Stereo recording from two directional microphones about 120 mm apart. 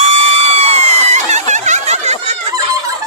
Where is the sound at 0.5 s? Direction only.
60° right (ahead or behind).